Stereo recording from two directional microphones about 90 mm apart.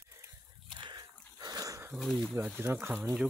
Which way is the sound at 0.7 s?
55° right (ahead or behind).